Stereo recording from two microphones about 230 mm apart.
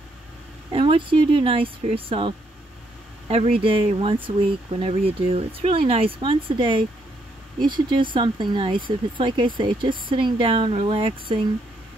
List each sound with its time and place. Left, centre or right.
0.7 s speech: right